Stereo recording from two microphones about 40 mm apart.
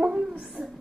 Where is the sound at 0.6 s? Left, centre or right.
Centre.